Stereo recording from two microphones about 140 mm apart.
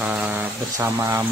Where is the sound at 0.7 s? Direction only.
20° right (ahead or behind).